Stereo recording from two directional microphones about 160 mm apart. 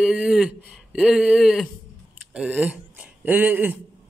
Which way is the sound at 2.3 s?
5° right (ahead or behind).